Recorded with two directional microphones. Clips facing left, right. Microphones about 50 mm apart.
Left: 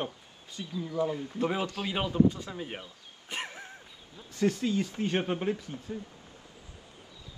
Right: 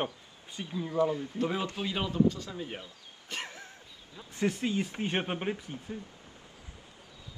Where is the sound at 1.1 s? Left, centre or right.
Left.